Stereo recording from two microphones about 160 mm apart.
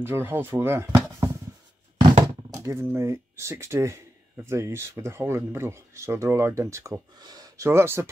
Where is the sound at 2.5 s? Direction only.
20° right (ahead or behind).